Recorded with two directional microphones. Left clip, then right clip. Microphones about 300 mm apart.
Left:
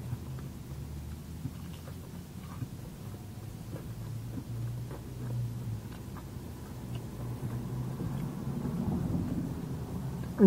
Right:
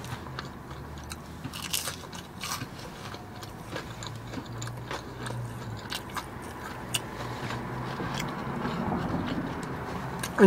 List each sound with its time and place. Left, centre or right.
7.4 s biting: centre